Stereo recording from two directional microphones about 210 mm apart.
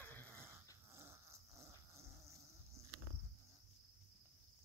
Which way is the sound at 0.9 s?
15° right (ahead or behind).